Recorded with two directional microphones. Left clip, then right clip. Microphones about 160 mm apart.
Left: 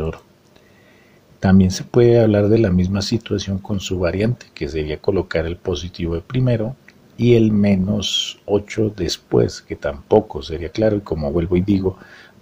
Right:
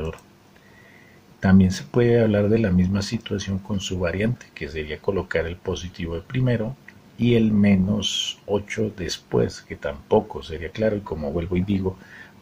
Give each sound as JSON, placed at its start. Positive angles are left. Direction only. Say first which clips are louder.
{"t": 1.4, "sound": "speech", "louder": "left 3 dB", "side_deg": 35}